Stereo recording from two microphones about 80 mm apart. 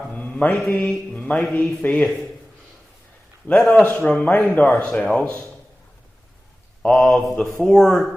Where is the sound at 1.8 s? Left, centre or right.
Centre.